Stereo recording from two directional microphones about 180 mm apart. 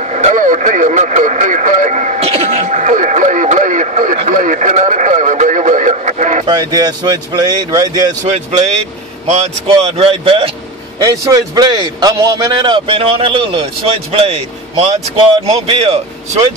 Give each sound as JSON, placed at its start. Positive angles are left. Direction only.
{"t": 0.0, "sound": "speech", "side_deg": -40}
{"t": 6.4, "sound": "a man's voice", "side_deg": -20}
{"t": 8.2, "sound": "a man's voice", "side_deg": -40}
{"t": 11.1, "sound": "a man's voice", "side_deg": -20}